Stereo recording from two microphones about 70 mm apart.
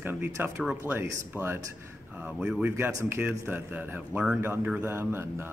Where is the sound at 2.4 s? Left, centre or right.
Centre.